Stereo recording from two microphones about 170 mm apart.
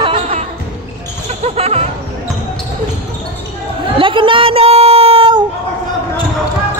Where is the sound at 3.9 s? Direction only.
30° right (ahead or behind).